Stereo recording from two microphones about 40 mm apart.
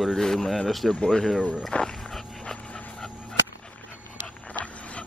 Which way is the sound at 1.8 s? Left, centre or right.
Centre.